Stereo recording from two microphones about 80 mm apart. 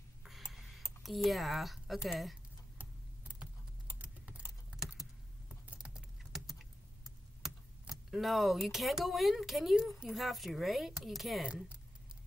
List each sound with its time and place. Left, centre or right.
0.2 s a sound: centre
2.8 s computer keyboard: centre
5.7 s keys jangling: centre
7.9 s speech: centre
11.4 s speech: centre